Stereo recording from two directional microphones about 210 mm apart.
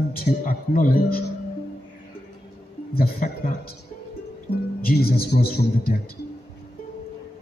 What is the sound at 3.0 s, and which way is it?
Speech, 45° left (ahead or behind).